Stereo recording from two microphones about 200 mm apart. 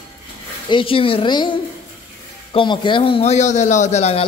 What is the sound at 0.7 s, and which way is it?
Speech, 25° left (ahead or behind).